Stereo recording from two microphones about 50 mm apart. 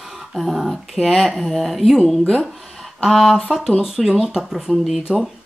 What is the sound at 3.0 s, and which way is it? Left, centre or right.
Speech, centre.